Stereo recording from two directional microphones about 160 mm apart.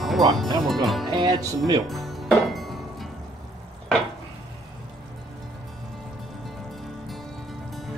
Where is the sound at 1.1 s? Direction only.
25° right (ahead or behind).